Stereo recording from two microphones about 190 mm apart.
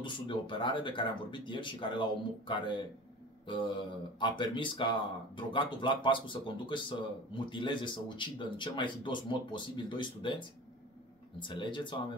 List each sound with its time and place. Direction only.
0.0 s speech: 25° left (ahead or behind)
3.4 s mantra: 25° left (ahead or behind)
4.2 s speech: 25° left (ahead or behind)
11.3 s speech: 25° left (ahead or behind)